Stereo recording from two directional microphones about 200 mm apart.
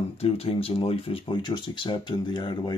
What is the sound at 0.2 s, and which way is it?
Speech, 30° left (ahead or behind).